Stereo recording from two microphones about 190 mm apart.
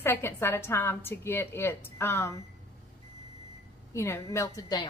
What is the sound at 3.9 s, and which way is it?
A woman's voice, 15° left (ahead or behind).